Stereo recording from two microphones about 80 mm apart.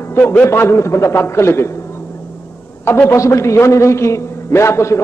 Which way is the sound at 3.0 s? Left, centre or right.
Left.